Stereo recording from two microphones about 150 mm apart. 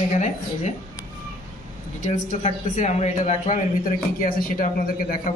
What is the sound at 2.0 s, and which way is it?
Speech, 55° left (ahead or behind).